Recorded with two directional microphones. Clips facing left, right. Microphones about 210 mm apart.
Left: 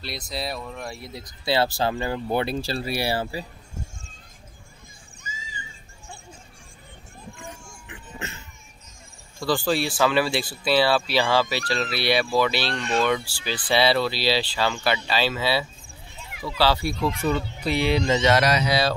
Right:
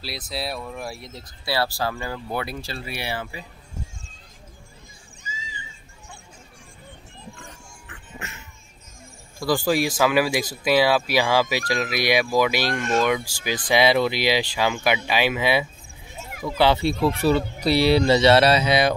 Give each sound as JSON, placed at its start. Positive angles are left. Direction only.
{"t": 0.0, "sound": "speech", "side_deg": 0}
{"t": 1.1, "sound": "speech", "side_deg": 20}
{"t": 7.9, "sound": "music", "side_deg": 25}
{"t": 9.4, "sound": "speech", "side_deg": -10}
{"t": 16.2, "sound": "children playing", "side_deg": -45}
{"t": 16.5, "sound": "speech", "side_deg": -20}